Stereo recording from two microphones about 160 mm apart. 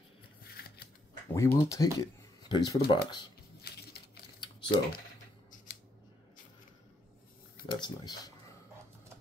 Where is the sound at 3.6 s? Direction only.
85° left.